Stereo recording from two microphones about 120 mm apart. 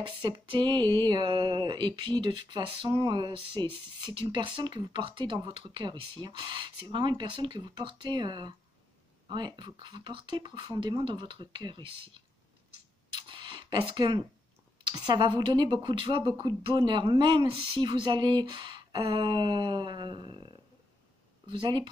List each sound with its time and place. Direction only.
0.0 s speech: 40° right (ahead or behind)
9.6 s speech: 40° right (ahead or behind)
13.1 s a sound: 40° right (ahead or behind)
14.8 s speech: 40° right (ahead or behind)